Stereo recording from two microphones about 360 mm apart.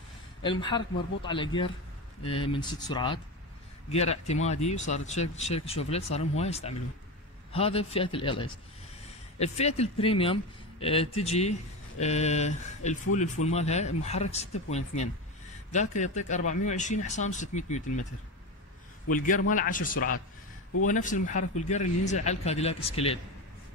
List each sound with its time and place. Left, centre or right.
0.4 s speech: centre
19.0 s speech: left